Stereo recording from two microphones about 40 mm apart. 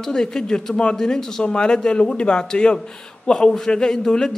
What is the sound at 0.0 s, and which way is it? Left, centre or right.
Speech, centre.